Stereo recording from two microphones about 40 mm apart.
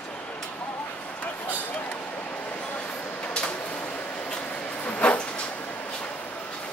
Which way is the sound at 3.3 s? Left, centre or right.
Left.